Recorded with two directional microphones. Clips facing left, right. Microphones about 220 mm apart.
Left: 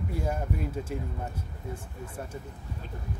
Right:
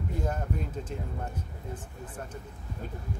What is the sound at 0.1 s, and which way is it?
Speech, 10° left (ahead or behind).